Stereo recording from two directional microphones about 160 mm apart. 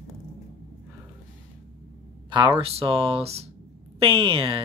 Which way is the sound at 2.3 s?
30° right (ahead or behind).